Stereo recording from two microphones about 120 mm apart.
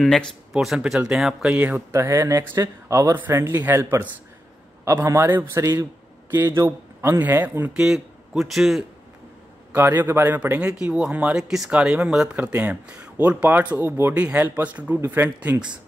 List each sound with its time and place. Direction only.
0.0 s speech: centre (ahead or behind); by 2.0 s 15° right (ahead or behind)
2.0 s speech: 25° right (ahead or behind); by 8.8 s centre (ahead or behind)
9.7 s speech: 20° right (ahead or behind)